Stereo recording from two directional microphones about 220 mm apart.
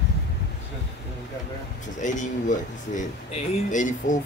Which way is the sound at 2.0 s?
35° left (ahead or behind).